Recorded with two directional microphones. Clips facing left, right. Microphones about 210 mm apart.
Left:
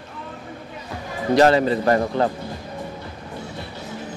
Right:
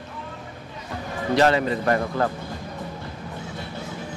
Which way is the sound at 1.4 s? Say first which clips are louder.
Left 4 dB; 35° left (ahead or behind).